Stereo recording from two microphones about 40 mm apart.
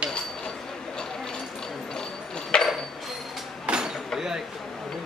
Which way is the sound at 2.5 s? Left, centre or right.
Left.